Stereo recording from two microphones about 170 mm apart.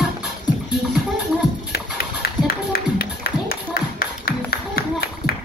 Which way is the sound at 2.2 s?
65° left (ahead or behind).